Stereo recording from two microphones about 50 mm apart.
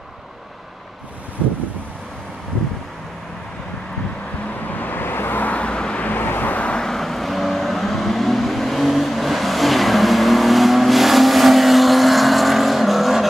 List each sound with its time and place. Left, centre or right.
4.6 s vehicle: left
5.6 s vehicle: centre
6.0 s vehicle: left
6.5 s vehicle: left
6.8 s vehicle: centre